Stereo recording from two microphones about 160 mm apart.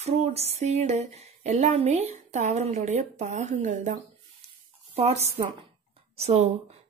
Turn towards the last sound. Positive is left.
turn(degrees=-45)  # may be behind; listen again after turning